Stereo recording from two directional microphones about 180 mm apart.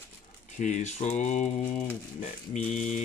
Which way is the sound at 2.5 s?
40° left (ahead or behind).